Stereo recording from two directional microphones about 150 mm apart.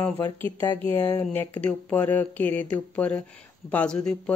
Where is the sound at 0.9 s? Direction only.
15° left (ahead or behind).